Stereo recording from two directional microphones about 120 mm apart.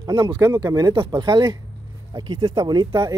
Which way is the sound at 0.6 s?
30° right (ahead or behind).